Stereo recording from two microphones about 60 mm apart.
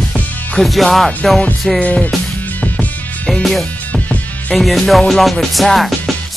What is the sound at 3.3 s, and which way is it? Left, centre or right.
Music, centre.